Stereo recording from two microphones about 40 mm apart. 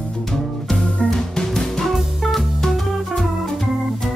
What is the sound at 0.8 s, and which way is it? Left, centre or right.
Music, left.